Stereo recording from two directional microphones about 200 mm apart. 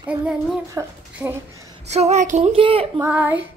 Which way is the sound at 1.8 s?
35° right (ahead or behind).